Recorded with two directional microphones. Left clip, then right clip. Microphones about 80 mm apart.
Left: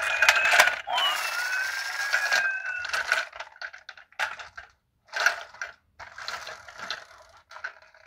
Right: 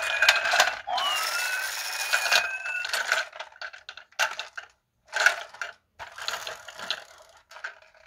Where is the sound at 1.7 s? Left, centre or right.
Right.